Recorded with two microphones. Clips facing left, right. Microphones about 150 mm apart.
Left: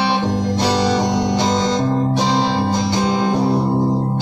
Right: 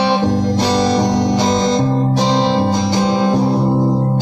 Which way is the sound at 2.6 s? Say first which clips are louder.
Right 3 dB; 50° right (ahead or behind).